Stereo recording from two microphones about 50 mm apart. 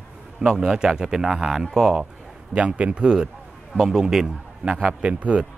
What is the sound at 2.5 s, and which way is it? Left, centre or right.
Speech, right.